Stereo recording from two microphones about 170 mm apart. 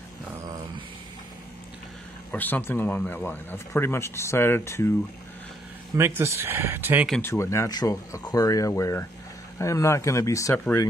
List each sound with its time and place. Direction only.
2.3 s speech: 10° left (ahead or behind)
5.9 s speech: 15° right (ahead or behind)
7.2 s speech: 15° left (ahead or behind)